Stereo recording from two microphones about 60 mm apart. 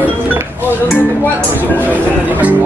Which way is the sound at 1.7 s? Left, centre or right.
Right.